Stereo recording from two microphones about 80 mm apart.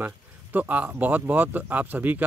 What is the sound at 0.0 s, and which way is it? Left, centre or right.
Speech, right.